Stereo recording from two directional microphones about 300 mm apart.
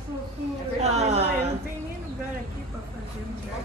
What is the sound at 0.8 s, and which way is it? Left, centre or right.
Speech, right.